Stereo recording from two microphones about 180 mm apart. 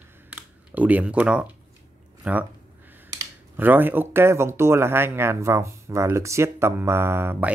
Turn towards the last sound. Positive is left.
turn(degrees=-10)  # may be behind; listen again after turning